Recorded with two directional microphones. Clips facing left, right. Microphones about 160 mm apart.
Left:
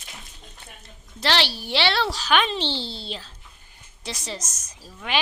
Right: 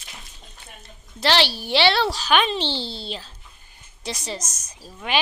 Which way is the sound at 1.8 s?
30° right (ahead or behind).